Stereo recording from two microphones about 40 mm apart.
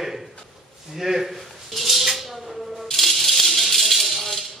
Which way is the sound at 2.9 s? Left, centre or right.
Centre.